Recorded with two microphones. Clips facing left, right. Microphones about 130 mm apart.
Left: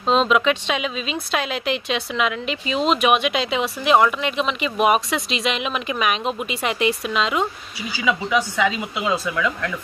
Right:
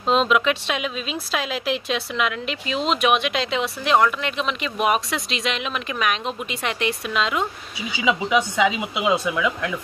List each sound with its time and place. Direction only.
0.1 s speech: centre (ahead or behind)
8.0 s speech: 20° right (ahead or behind)